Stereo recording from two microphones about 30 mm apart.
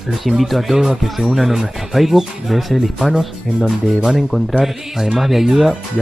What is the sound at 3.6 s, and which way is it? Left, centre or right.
Speech, right.